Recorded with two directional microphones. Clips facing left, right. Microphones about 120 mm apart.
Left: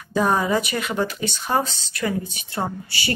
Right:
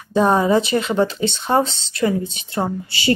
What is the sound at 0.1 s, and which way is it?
Speech, 25° right (ahead or behind).